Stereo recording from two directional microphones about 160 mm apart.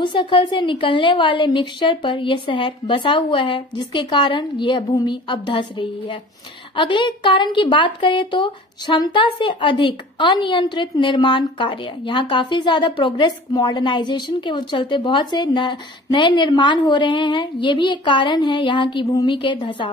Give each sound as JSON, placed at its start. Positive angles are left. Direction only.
{"t": 0.0, "sound": "a woman's voice", "side_deg": 30}